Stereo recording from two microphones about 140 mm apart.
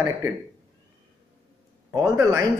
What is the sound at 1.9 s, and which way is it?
Speech, 25° right (ahead or behind).